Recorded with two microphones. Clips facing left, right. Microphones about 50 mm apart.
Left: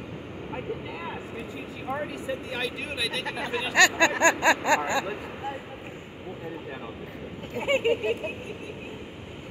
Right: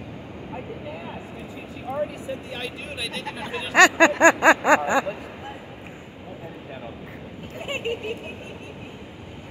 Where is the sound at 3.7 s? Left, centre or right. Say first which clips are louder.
Right 5 dB; right.